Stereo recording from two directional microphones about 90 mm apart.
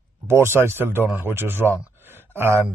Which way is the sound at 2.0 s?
25° right (ahead or behind).